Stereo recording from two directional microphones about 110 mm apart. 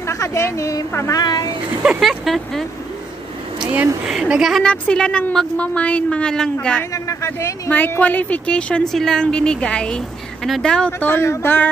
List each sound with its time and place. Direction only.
0.0 s a woman's voice: 25° left (ahead or behind)
1.7 s speech: 15° right (ahead or behind)
2.0 s speech: centre (ahead or behind)
3.6 s speech: 15° right (ahead or behind)
4.6 s a woman's voice: 10° left (ahead or behind)
6.8 s a man's voice: 30° left (ahead or behind)
7.7 s a woman's voice: 15° left (ahead or behind)
10.9 s a woman's voice: 20° left (ahead or behind)